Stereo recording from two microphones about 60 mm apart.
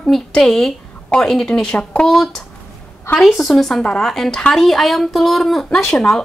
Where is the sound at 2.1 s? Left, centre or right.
Centre.